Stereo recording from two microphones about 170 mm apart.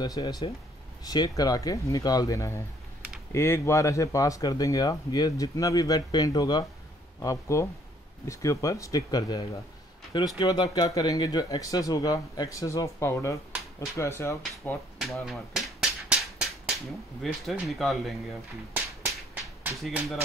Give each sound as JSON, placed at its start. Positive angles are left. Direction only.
{"t": 0.0, "sound": "speech", "side_deg": 25}
{"t": 15.0, "sound": "a sound", "side_deg": 0}
{"t": 17.2, "sound": "speech", "side_deg": 0}